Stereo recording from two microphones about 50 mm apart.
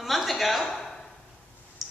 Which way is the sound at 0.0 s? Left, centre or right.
Centre.